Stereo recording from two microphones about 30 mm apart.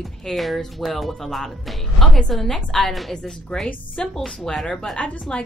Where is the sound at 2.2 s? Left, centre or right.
Centre.